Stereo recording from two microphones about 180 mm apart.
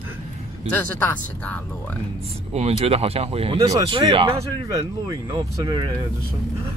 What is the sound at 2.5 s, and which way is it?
Speech, 35° right (ahead or behind).